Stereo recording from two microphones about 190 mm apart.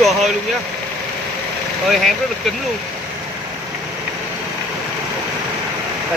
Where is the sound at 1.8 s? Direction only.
Centre (ahead or behind).